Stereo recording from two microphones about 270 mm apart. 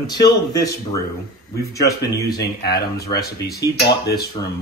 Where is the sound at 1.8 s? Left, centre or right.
Centre.